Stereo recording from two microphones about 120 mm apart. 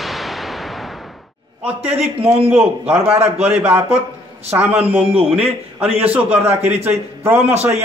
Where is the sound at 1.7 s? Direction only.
10° right (ahead or behind).